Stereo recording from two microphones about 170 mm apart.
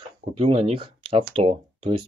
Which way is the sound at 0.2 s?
35° right (ahead or behind).